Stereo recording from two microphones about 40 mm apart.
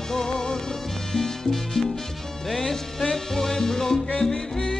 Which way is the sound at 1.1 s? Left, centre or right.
Centre.